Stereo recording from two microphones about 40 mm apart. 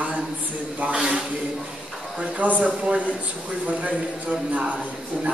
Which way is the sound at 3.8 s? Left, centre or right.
Right.